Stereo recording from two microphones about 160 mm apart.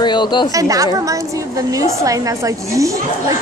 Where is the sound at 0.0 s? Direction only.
30° left (ahead or behind).